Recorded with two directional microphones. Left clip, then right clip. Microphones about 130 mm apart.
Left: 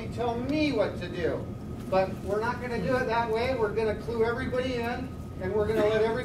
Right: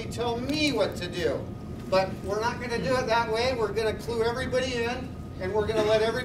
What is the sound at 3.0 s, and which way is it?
Speech, 40° right (ahead or behind).